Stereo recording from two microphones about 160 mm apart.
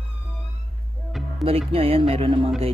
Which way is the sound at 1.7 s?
35° right (ahead or behind).